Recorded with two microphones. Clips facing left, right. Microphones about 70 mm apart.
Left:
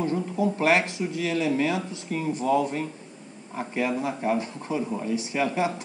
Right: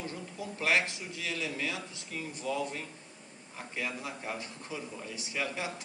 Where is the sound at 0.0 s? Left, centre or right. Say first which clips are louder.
Left 15 dB; left.